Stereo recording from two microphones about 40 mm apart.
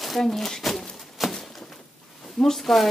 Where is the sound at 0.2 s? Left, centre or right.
Centre.